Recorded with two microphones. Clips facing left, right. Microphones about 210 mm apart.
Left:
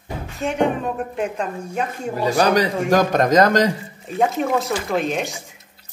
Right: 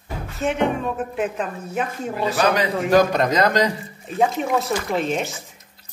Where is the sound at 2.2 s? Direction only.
40° left (ahead or behind).